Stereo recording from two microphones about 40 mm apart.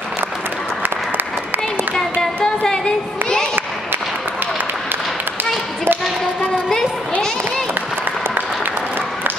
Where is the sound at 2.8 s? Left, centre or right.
Centre.